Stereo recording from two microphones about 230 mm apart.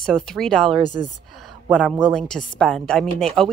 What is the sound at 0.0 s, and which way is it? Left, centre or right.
Speech, centre.